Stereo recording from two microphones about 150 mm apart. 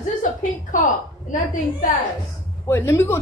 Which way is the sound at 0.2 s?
60° left (ahead or behind).